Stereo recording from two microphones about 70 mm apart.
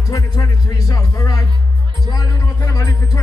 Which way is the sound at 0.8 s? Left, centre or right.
Left.